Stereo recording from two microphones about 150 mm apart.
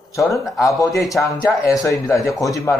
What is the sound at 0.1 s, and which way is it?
A man's voice, 20° left (ahead or behind).